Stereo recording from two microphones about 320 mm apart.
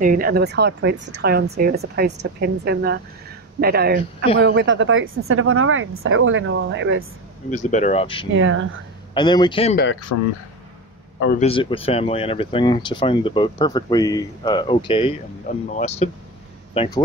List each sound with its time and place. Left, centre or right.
0.0 s a woman's voice: right
7.5 s speech: left
8.4 s a woman's voice: right
9.1 s speech: centre
10.1 s speech: left
11.1 s speech: left
11.4 s speech: centre